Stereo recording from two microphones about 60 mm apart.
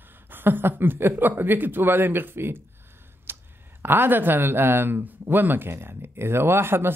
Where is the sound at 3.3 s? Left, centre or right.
Right.